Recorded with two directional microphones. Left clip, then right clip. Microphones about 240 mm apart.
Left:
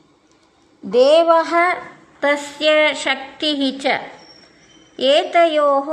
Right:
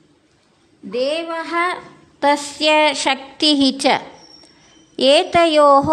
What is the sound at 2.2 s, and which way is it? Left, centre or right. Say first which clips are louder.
A woman's voice: right 2 dB; right.